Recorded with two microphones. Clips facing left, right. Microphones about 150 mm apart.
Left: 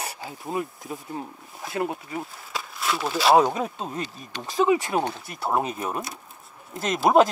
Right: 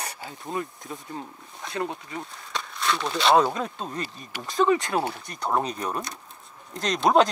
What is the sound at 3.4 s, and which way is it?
Speech, 20° left (ahead or behind).